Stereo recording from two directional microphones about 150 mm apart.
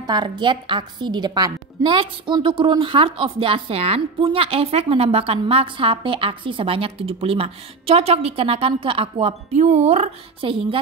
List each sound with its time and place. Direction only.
0.0 s a woman's voice: 30° right (ahead or behind)
9.5 s speech: 50° right (ahead or behind)